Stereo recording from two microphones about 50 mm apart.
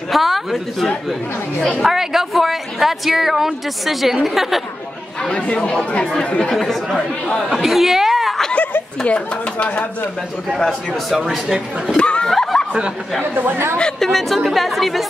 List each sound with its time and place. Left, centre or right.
0.1 s a man's voice: centre
5.3 s speech: left
6.5 s speech: centre
7.0 s speech: centre
7.5 s a sound: centre
9.0 s speech: left
11.1 s speech: centre
12.0 s snicker: left
12.3 s snicker: centre
13.2 s speech: right
13.9 s speech: centre